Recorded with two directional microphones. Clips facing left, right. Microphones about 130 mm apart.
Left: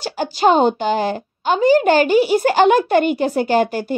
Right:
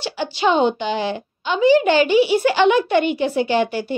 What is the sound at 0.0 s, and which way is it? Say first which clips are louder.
A woman's voice: left 4 dB; 45° left (ahead or behind).